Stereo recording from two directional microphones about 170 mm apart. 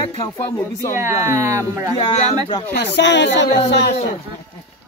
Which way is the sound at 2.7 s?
85° left.